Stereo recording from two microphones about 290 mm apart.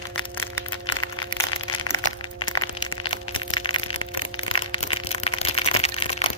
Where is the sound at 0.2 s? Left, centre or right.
Centre.